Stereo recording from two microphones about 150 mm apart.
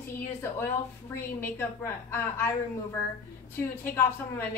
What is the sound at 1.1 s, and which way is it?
A woman's voice, 15° left (ahead or behind).